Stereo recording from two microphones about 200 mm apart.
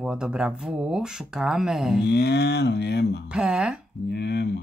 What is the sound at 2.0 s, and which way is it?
Speech, 55° left (ahead or behind).